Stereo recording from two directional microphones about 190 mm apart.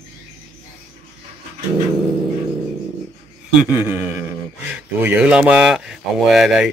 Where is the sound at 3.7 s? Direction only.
10° right (ahead or behind).